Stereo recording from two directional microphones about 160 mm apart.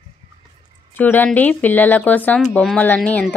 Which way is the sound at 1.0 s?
10° left (ahead or behind).